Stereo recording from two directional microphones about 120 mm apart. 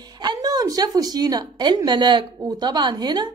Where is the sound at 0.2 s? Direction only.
35° right (ahead or behind).